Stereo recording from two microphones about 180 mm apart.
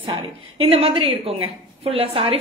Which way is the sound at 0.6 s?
35° right (ahead or behind).